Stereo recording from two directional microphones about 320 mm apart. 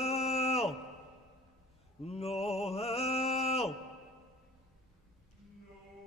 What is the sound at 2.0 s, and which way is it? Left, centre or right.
Mantra, centre.